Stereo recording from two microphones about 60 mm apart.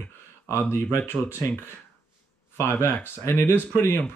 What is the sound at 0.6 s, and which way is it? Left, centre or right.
Speech, left.